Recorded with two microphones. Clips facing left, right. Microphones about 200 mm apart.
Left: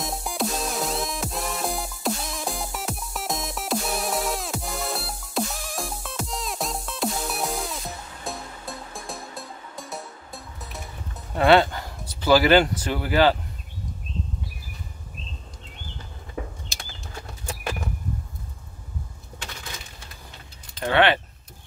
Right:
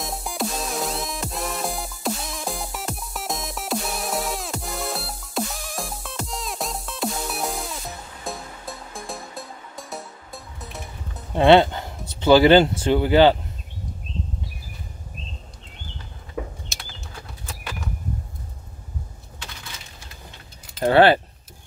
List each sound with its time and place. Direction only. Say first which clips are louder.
0.0 s music: even; centre (ahead or behind)
11.3 s speech: right 3 dB; 25° right (ahead or behind)
20.8 s keys jangling: right 5 dB; 35° right (ahead or behind)